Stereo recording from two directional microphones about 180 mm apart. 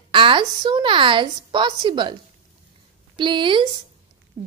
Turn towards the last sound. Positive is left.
turn(degrees=-25)  # may be behind; listen again after turning